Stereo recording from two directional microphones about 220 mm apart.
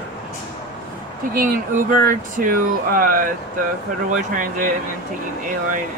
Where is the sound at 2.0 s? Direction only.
40° right (ahead or behind).